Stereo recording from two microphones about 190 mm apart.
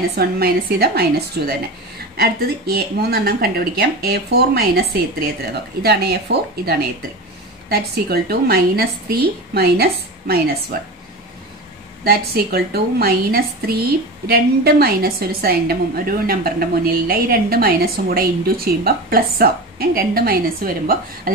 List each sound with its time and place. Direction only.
0.1 s speech: 55° right (ahead or behind)
2.1 s speech: 55° right (ahead or behind)
7.7 s speech: 55° right (ahead or behind)
12.0 s a woman's voice: 55° right (ahead or behind)